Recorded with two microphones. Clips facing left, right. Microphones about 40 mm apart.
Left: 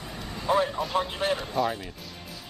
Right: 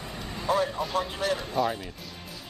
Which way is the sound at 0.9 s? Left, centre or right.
Left.